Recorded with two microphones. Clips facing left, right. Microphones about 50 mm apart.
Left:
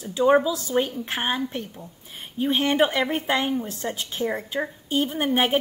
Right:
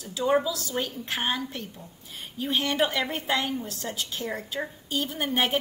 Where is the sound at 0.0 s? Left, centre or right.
Left.